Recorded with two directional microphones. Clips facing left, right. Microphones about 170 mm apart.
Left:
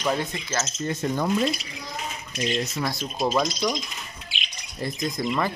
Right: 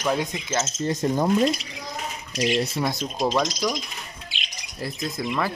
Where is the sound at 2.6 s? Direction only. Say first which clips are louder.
Right 3 dB; 25° right (ahead or behind).